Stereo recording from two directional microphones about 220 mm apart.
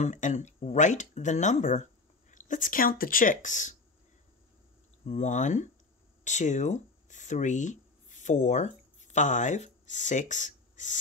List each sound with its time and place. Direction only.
0.0 s speech: 35° left (ahead or behind)
5.0 s speech: 35° left (ahead or behind)